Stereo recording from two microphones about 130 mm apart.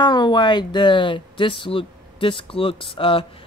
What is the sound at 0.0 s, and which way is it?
Speech, 35° left (ahead or behind).